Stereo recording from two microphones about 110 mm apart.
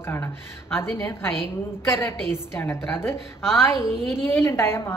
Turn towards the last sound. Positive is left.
turn(degrees=20)  # may be behind; listen again after turning